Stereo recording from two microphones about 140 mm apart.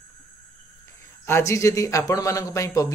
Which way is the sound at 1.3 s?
20° left (ahead or behind).